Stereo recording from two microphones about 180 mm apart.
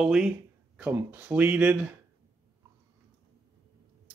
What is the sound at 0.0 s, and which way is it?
Speech, 5° right (ahead or behind).